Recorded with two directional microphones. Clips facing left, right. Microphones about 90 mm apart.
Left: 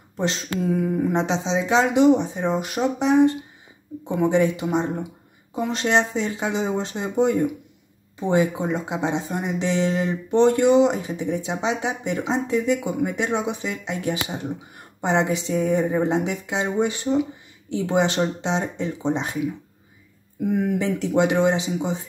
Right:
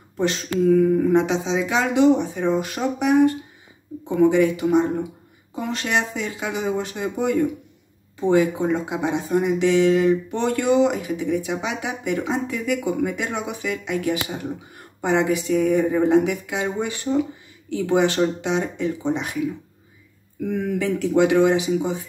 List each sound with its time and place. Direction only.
0.2 s speech: 25° left (ahead or behind)
20.5 s speech: 25° left (ahead or behind)